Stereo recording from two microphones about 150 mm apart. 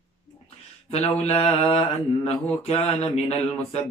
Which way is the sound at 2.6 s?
45° left (ahead or behind).